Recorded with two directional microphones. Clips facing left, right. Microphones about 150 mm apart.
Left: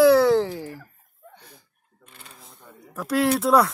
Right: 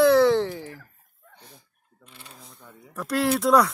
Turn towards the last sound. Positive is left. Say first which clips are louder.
# left 1 dB
turn(degrees=0)  # may be behind; listen again after turning